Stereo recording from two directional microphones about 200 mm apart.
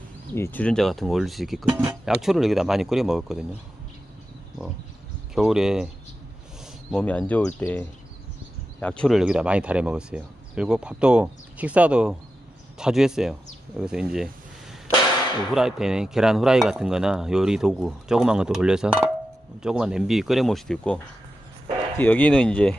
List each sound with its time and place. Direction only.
0.3 s speech: 10° left (ahead or behind)
1.7 s speech: 20° right (ahead or behind)
2.0 s speech: centre (ahead or behind)
5.3 s speech: 5° right (ahead or behind)
6.9 s speech: 5° left (ahead or behind)
8.8 s speech: 5° left (ahead or behind)
15.5 s speech: 5° right (ahead or behind)